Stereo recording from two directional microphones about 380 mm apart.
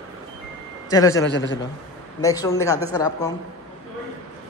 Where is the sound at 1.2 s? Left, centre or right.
Left.